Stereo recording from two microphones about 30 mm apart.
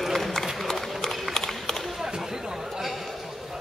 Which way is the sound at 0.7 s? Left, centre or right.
Centre.